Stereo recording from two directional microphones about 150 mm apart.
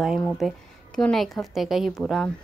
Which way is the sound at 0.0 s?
Centre (ahead or behind).